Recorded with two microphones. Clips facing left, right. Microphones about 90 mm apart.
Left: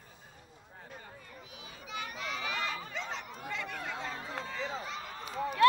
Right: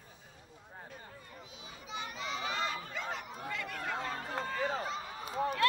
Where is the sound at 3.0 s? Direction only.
15° right (ahead or behind).